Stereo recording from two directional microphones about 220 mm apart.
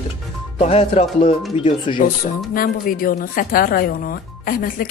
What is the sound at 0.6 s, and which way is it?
Speech, 25° left (ahead or behind).